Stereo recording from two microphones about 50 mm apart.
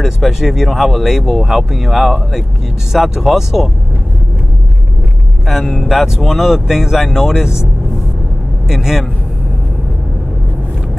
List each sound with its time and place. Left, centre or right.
0.0 s speech: centre
5.5 s speech: centre
8.6 s speech: centre